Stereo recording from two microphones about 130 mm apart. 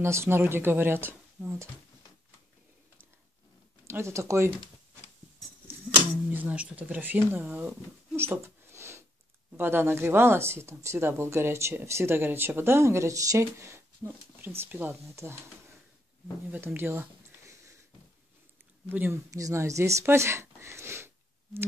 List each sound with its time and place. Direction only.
0.0 s speech: 20° right (ahead or behind)
3.8 s speech: 20° right (ahead or behind)
6.3 s speech: 10° right (ahead or behind)
16.4 s a sound: 15° right (ahead or behind)
18.9 s speech: 15° right (ahead or behind)